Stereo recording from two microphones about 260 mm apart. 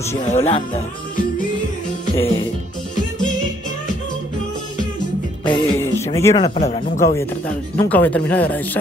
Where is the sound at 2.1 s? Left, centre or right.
Centre.